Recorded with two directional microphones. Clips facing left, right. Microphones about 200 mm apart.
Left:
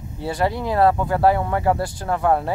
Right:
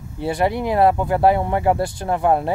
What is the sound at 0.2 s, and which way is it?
Speech, 20° right (ahead or behind).